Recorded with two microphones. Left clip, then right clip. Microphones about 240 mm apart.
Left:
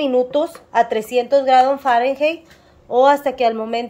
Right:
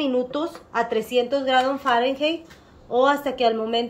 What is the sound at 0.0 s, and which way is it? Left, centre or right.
Speech, left.